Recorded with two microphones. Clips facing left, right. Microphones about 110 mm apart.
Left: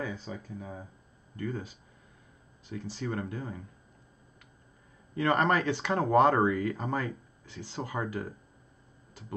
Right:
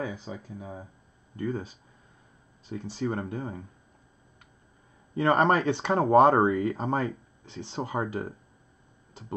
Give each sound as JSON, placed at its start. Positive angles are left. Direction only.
{"t": 0.0, "sound": "speech", "side_deg": -15}
{"t": 5.1, "sound": "speech", "side_deg": -25}